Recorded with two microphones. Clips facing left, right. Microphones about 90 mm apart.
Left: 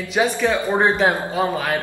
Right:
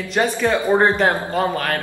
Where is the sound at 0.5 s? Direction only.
20° right (ahead or behind).